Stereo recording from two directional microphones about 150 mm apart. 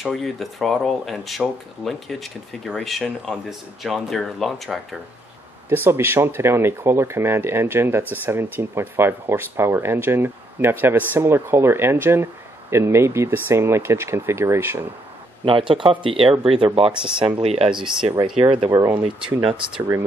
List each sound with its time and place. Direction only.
0.0 s speech: centre (ahead or behind)
5.7 s speech: 15° right (ahead or behind)
15.7 s speech: 35° right (ahead or behind)
18.7 s speech: 20° right (ahead or behind)
19.2 s speech: 35° right (ahead or behind)